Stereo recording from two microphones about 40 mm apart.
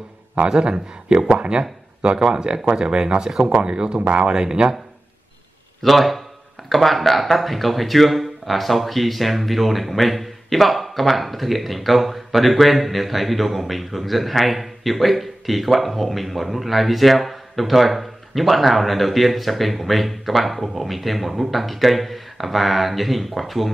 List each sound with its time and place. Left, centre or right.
0.5 s speech: centre
5.8 s a man's voice: centre